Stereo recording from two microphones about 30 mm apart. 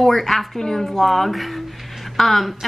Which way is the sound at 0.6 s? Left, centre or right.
Centre.